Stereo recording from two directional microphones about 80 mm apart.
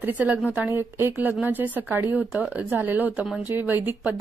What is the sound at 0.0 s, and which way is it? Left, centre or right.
A woman's voice, right.